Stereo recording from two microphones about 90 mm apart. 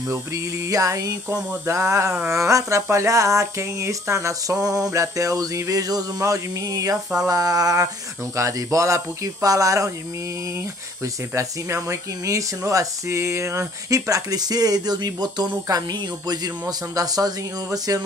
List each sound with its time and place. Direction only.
0.1 s speech: 35° right (ahead or behind)
11.3 s speech: 35° right (ahead or behind)